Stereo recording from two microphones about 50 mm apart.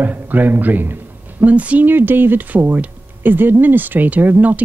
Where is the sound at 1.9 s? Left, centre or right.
Right.